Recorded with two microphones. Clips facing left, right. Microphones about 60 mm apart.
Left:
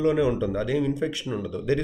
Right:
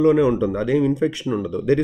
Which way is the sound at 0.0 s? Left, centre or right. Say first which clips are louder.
Right 6 dB; right.